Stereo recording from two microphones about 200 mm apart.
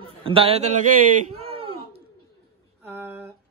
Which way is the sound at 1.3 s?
30° right (ahead or behind).